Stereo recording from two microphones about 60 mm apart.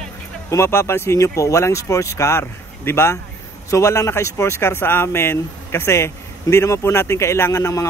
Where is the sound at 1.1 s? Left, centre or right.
Left.